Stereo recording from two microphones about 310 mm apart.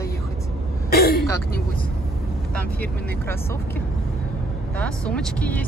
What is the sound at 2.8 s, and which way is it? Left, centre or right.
Speech, centre.